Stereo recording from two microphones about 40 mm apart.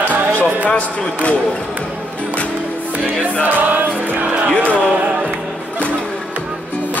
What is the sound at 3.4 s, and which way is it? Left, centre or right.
Music, right.